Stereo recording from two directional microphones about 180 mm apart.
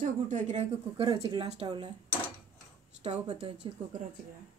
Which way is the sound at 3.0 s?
35° right (ahead or behind).